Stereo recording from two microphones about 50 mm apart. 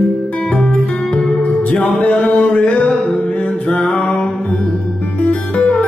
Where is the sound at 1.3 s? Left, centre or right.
Left.